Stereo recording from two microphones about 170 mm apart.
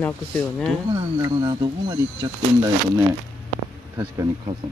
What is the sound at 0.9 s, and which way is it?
Speech, 25° right (ahead or behind).